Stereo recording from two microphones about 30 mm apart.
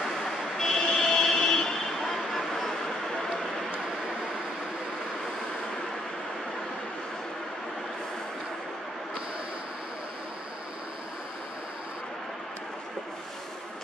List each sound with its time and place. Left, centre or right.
0.0 s vehicle: centre
2.0 s vehicle: centre